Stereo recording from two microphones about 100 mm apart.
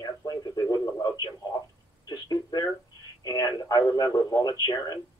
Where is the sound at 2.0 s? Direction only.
45° left (ahead or behind).